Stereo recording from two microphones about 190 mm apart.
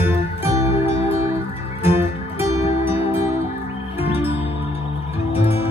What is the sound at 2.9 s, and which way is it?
Music, 30° left (ahead or behind).